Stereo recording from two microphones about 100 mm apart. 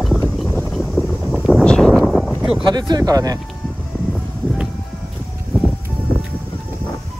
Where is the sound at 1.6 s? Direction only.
10° left (ahead or behind).